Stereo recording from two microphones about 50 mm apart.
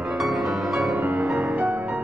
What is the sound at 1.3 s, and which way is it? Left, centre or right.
Music, centre.